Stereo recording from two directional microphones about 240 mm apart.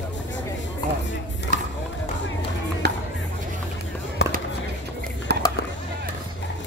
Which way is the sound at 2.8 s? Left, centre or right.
Right.